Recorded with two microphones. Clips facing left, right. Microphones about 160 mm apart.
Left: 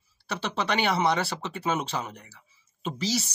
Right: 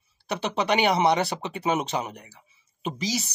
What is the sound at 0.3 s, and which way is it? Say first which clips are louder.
Speech: right 4 dB; 15° right (ahead or behind).